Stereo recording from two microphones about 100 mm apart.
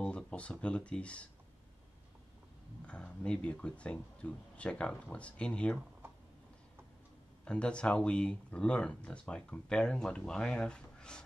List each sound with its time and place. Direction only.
0.0 s speech: 10° left (ahead or behind)
2.9 s speech: 10° left (ahead or behind)
7.4 s speech: 10° left (ahead or behind)